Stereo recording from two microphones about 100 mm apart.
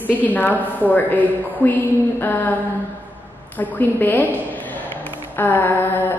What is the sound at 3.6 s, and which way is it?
Speech, 20° left (ahead or behind).